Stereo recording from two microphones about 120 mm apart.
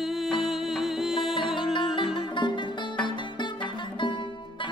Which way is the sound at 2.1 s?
40° left (ahead or behind).